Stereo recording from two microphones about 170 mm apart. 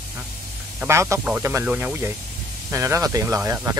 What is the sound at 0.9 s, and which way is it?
Speech, 15° right (ahead or behind).